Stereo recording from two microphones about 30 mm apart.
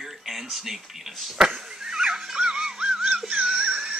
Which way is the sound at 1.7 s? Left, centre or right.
Right.